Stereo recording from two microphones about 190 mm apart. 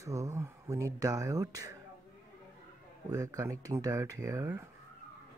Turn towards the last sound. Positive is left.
turn(degrees=-15)  # may be behind; listen again after turning